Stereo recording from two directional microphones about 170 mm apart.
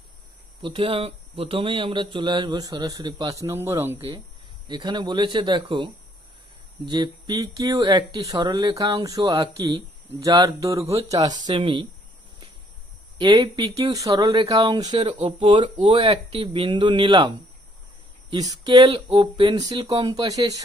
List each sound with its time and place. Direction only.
0.6 s speech: 30° right (ahead or behind); by 4.0 s 15° right (ahead or behind)
4.6 s speech: 25° right (ahead or behind)
13.2 s speech: 25° right (ahead or behind)
18.3 s speech: 25° right (ahead or behind)